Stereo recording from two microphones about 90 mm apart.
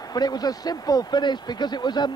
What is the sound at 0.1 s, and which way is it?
Speech, 50° left (ahead or behind).